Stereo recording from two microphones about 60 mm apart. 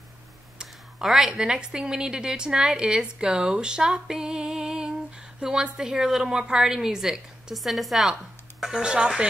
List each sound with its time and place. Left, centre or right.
0.6 s a woman's voice: centre